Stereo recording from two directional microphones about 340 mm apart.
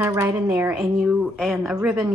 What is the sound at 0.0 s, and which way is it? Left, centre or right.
A woman's voice, centre.